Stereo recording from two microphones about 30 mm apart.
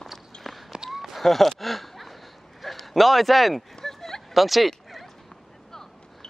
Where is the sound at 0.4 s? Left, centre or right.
Centre.